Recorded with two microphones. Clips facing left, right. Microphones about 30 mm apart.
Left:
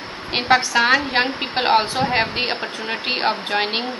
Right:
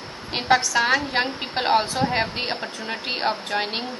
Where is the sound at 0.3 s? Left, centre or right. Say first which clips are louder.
Left 3 dB; left.